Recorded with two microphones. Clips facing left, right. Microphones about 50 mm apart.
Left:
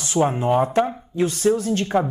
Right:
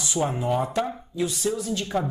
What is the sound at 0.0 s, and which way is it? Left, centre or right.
Speech, left.